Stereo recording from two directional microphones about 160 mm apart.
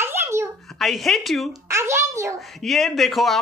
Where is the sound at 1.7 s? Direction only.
15° right (ahead or behind).